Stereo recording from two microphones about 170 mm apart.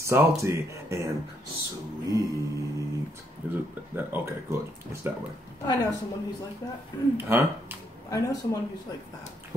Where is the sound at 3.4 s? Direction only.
10° right (ahead or behind).